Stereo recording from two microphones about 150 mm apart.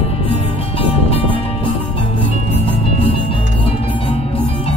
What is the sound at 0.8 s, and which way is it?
Music, 35° left (ahead or behind).